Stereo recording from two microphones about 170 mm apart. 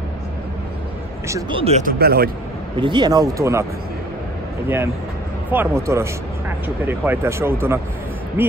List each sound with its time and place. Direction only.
1.5 s speech: 35° right (ahead or behind)
1.8 s speech: 60° right (ahead or behind)
2.8 s speech: 25° right (ahead or behind)
4.6 s speech: 15° right (ahead or behind)